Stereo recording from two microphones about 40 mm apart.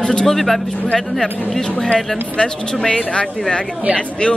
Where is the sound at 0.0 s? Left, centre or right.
Left.